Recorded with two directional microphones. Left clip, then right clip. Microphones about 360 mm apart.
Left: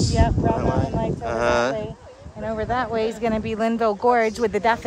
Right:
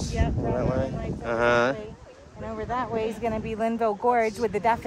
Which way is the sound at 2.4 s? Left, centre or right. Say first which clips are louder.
Left 6 dB; left.